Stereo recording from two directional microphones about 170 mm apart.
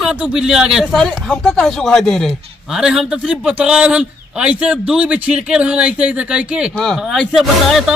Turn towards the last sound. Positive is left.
turn(degrees=0)  # may be behind; listen again after turning